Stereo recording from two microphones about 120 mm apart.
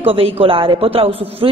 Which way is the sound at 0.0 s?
50° right (ahead or behind).